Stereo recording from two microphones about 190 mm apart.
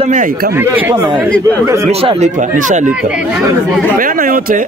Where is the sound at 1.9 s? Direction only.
30° right (ahead or behind).